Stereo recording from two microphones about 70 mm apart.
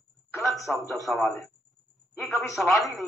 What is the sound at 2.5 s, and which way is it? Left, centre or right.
Speech, centre.